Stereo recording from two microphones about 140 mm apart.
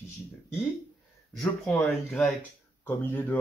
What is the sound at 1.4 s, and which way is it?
Speech, 10° left (ahead or behind).